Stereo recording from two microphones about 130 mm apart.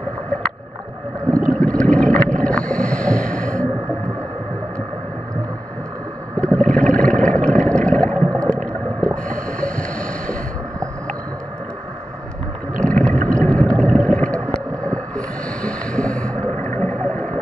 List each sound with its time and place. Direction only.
1.3 s boat: 5° left (ahead or behind)
6.4 s a sound: 5° left (ahead or behind)
9.0 s boat: 10° left (ahead or behind)
13.3 s boat: 10° left (ahead or behind)